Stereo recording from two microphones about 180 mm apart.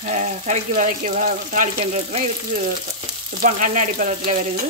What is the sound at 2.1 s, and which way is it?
Speech, 40° right (ahead or behind).